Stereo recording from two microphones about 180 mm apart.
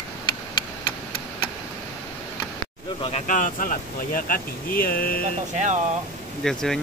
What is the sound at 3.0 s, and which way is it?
Speech, 30° left (ahead or behind).